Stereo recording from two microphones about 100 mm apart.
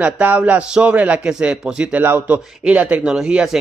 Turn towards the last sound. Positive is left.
turn(degrees=-5)  # may be behind; listen again after turning